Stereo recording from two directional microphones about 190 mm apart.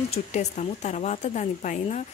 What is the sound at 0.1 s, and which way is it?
Speech, 35° left (ahead or behind).